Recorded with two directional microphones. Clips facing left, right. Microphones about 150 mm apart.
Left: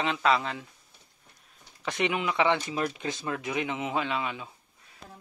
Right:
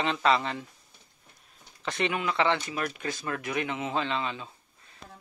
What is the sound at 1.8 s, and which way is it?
A man's voice, 10° left (ahead or behind).